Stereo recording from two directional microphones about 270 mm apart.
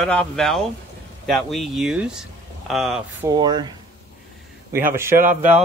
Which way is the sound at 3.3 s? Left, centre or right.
Centre.